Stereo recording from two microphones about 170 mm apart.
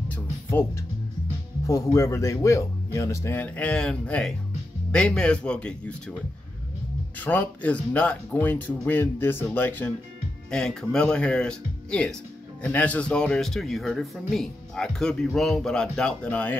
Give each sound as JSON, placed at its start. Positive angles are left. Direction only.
{"t": 0.1, "sound": "music", "side_deg": 15}
{"t": 1.7, "sound": "speech", "side_deg": 20}
{"t": 7.2, "sound": "speech", "side_deg": 10}